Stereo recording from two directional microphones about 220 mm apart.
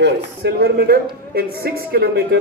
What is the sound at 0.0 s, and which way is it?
Speech, 45° right (ahead or behind).